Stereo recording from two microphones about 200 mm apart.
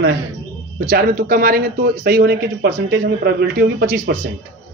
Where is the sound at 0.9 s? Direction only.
45° right (ahead or behind).